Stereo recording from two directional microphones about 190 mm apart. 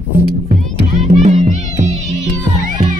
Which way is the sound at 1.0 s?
40° right (ahead or behind).